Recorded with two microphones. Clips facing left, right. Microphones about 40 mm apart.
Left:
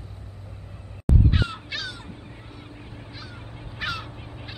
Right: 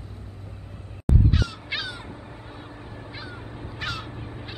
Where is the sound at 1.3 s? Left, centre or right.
Left.